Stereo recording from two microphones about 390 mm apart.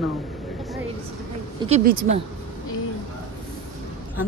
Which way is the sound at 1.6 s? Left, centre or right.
Centre.